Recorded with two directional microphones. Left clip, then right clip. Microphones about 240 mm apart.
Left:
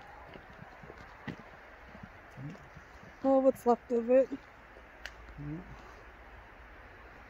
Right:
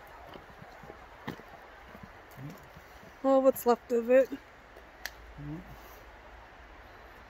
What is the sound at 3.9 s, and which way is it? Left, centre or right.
Speech, centre.